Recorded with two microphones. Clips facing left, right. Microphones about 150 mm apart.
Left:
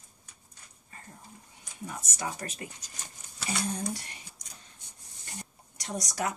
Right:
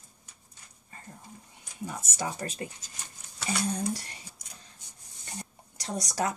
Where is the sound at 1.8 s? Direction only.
30° right (ahead or behind).